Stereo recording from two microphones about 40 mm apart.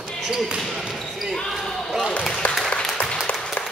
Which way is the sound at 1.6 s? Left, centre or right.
Centre.